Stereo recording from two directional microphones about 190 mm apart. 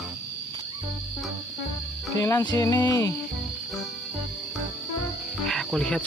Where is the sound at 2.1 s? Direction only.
15° left (ahead or behind).